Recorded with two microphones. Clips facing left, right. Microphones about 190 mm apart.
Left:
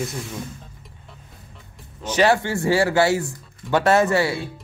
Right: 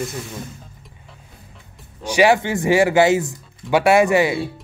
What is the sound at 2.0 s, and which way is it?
Speech, 10° right (ahead or behind).